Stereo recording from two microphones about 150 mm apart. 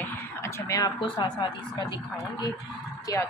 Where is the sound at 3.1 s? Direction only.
25° left (ahead or behind).